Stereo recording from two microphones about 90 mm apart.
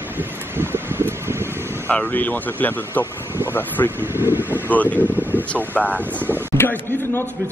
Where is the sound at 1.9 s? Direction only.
20° left (ahead or behind).